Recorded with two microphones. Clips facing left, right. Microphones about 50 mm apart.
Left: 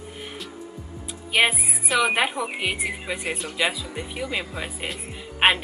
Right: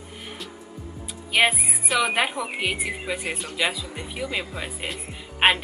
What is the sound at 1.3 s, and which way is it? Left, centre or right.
A woman's voice, centre.